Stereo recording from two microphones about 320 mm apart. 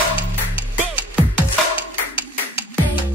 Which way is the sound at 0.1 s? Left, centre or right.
Centre.